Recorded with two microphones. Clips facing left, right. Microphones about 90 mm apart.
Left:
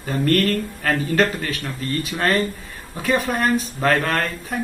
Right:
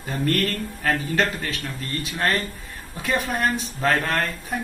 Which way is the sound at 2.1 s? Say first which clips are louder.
Left 3 dB; 10° left (ahead or behind).